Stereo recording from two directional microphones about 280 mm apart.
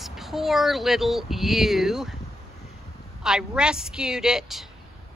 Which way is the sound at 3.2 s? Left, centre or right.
Centre.